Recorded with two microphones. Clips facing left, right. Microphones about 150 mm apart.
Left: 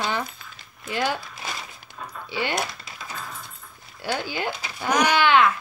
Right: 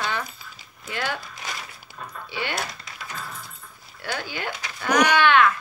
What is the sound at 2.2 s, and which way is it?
Speech, 15° left (ahead or behind).